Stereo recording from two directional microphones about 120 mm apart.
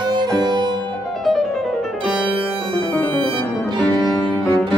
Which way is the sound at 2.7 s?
10° left (ahead or behind).